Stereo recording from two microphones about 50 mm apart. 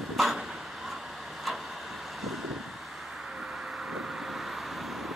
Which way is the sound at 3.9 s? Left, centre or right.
Centre.